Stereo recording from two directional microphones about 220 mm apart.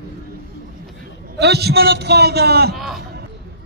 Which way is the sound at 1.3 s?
50° right (ahead or behind).